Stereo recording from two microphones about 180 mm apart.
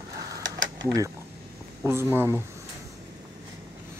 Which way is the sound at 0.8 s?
20° right (ahead or behind).